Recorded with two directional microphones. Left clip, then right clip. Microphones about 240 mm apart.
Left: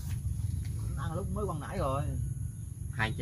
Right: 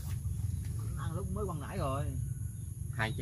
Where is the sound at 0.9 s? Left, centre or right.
Left.